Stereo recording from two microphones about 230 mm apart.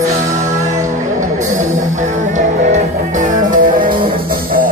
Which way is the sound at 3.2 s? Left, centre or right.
Right.